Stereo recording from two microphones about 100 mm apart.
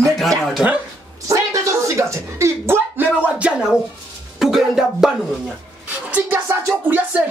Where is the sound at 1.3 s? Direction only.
30° right (ahead or behind); by 3.8 s 15° right (ahead or behind).